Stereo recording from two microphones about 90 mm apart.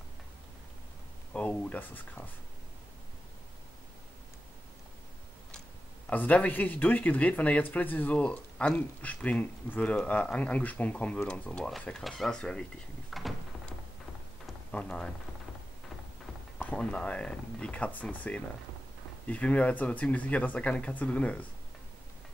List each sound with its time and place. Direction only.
1.3 s speech: 15° left (ahead or behind)
6.0 s speech: 15° left (ahead or behind)
13.1 s a sound: centre (ahead or behind)
14.7 s speech: 10° left (ahead or behind)
16.5 s speech: 15° left (ahead or behind)